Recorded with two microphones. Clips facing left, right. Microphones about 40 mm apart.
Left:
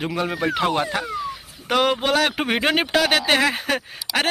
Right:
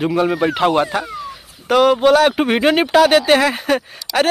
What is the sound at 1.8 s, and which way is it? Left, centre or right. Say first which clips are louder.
Speech: right 9 dB; centre.